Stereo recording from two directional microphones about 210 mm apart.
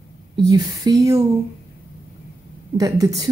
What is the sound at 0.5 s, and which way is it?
Speech, 15° right (ahead or behind).